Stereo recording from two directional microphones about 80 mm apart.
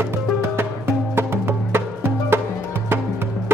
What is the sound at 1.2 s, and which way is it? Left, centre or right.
Music, right.